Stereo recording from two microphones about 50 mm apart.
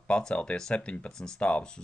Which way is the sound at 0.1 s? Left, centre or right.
Centre.